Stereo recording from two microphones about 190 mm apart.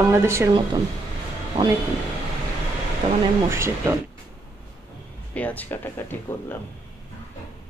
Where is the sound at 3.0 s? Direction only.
30° right (ahead or behind).